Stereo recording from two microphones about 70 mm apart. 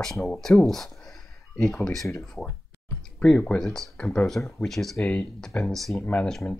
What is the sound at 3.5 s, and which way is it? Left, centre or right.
Speech, centre.